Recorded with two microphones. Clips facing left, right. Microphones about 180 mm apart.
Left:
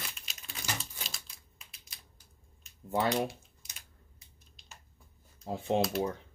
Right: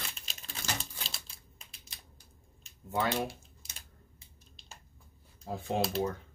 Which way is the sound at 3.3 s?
35° right (ahead or behind).